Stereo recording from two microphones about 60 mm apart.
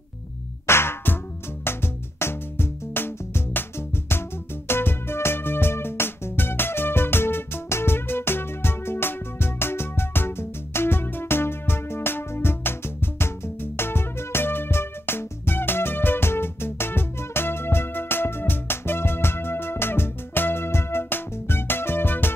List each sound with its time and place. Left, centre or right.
0.7 s music: left
4.6 s music: left